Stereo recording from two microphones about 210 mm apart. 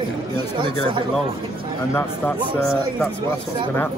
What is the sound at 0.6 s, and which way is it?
Speech, 20° right (ahead or behind).